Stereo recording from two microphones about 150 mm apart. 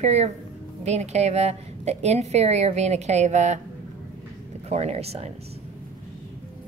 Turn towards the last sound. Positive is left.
turn(degrees=-45)  # may be behind; listen again after turning